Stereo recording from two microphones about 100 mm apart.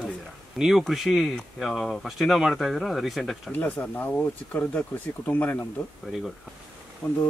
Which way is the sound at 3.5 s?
15° left (ahead or behind).